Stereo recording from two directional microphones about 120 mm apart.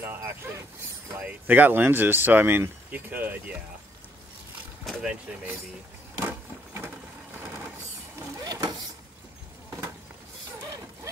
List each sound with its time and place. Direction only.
0.0 s speech: 20° right (ahead or behind)
4.8 s speech: 10° right (ahead or behind)
6.1 s vehicle: 20° right (ahead or behind)
8.2 s vehicle: 30° right (ahead or behind)